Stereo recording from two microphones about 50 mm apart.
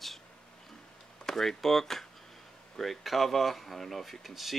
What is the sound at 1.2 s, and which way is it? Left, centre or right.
Speech, centre.